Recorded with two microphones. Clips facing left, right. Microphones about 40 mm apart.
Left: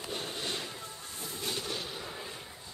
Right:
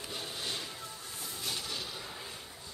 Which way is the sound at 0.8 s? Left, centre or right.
Left.